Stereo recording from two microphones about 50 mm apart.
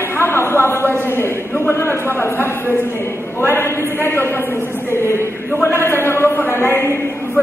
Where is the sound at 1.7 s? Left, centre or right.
Left.